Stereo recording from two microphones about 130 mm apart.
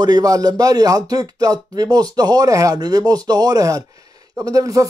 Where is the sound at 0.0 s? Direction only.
30° right (ahead or behind).